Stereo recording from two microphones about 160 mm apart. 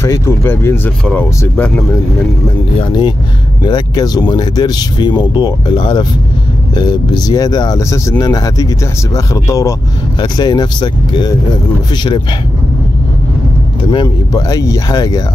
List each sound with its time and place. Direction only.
0.0 s speech: 15° left (ahead or behind)
2.8 s speech: 30° left (ahead or behind)
13.8 s speech: 25° left (ahead or behind)